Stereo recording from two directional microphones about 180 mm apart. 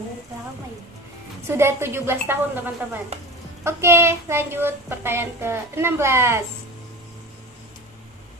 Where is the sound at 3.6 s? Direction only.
15° right (ahead or behind).